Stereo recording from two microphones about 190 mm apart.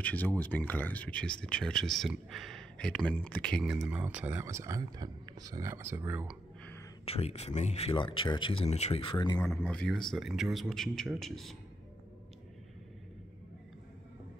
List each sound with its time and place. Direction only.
0.0 s speech: 10° left (ahead or behind); by 6.3 s 10° right (ahead or behind)
7.1 s speech: 35° left (ahead or behind)
9.5 s speech: 5° left (ahead or behind)